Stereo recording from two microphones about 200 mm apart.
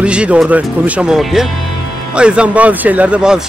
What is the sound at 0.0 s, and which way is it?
Speech, 5° right (ahead or behind).